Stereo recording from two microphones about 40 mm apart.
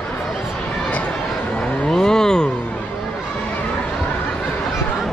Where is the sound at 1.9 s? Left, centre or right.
Centre.